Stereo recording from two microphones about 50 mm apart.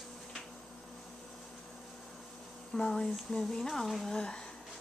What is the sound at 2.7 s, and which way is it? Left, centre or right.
Speech, centre.